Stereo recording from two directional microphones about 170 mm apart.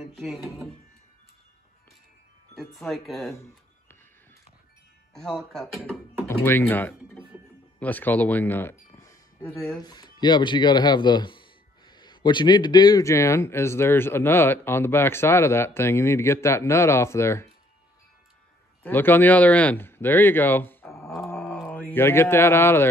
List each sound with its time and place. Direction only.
0.0 s speech: centre (ahead or behind)
2.5 s speech: centre (ahead or behind)
5.1 s speech: centre (ahead or behind)
6.2 s speech: 10° left (ahead or behind)
18.8 s speech: 10° left (ahead or behind)
21.2 s mantra: 10° left (ahead or behind)
21.6 s speech: 10° left (ahead or behind)